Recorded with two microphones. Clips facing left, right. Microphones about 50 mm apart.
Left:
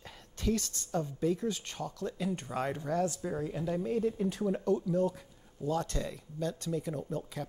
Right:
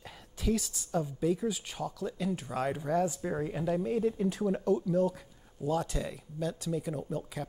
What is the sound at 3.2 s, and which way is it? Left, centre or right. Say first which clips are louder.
Speech: right 2 dB; right.